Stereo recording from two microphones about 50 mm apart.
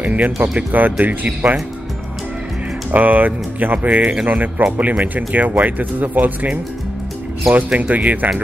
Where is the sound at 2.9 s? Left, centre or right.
Right.